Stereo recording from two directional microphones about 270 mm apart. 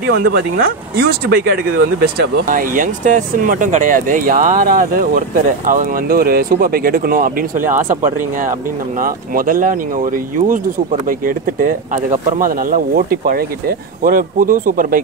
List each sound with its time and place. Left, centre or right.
0.0 s speech: right
9.0 s speech: right